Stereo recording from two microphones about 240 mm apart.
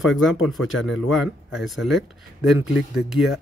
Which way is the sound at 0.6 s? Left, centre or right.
Left.